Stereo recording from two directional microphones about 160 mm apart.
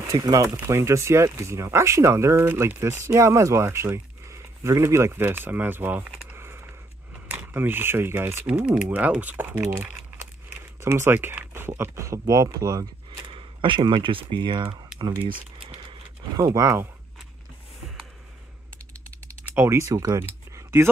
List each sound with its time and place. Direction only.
0.1 s speech: 20° right (ahead or behind)
13.3 s speech: 35° right (ahead or behind)
15.6 s a sound: 35° right (ahead or behind)
16.3 s speech: 20° right (ahead or behind)
19.5 s speech: 15° right (ahead or behind)